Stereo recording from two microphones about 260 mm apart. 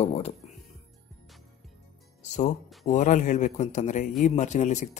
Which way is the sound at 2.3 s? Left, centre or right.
Left.